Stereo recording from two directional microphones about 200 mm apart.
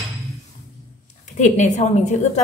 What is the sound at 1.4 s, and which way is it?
A woman's voice, 35° left (ahead or behind).